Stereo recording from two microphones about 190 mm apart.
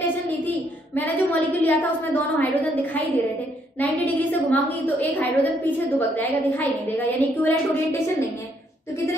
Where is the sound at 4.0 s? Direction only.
10° left (ahead or behind).